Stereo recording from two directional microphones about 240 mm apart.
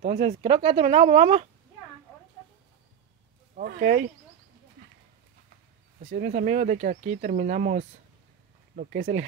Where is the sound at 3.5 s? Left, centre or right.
Right.